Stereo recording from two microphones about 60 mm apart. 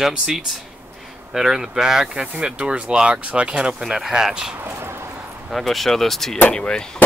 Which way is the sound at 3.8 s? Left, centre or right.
Centre.